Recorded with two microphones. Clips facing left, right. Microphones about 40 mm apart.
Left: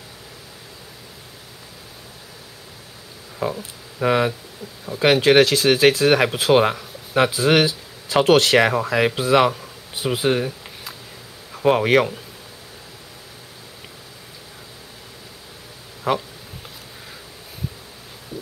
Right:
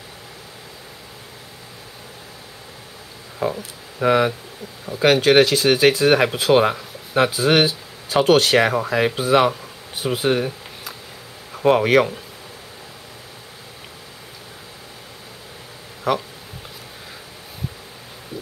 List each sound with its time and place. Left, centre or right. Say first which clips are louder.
3.3 s speech: right 2 dB; centre
9.3 s speech: right 1 dB; centre
11.6 s speech: right 1 dB; centre